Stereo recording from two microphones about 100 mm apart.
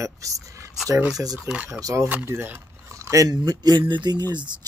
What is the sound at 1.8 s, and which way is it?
Speech, 30° right (ahead or behind).